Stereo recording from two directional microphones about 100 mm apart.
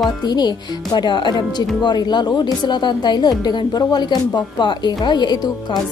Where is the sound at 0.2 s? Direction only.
45° left (ahead or behind).